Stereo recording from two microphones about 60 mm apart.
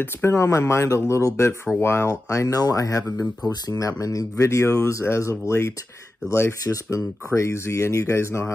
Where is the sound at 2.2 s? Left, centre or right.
Left.